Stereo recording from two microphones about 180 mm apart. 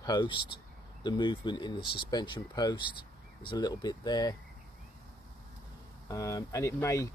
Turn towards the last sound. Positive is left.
turn(degrees=15)  # may be behind; listen again after turning